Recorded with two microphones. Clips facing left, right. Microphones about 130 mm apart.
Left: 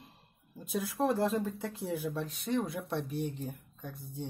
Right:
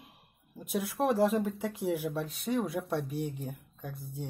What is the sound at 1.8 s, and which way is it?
Speech, 80° right.